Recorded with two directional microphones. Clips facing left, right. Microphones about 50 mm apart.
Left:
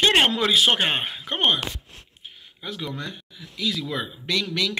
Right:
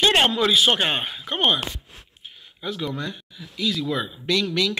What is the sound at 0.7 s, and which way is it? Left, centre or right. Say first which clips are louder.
Speech: even; left.